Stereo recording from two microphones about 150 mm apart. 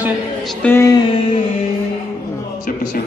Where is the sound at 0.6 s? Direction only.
20° left (ahead or behind).